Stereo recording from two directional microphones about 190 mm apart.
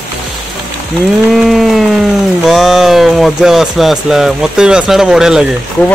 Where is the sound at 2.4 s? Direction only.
Centre (ahead or behind).